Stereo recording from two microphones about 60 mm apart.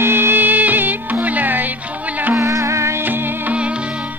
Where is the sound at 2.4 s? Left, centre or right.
Right.